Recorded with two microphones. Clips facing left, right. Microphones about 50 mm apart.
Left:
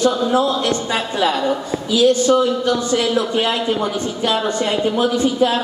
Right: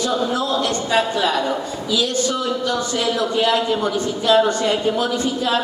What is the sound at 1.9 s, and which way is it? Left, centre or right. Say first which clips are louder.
Speech: left 7 dB; left.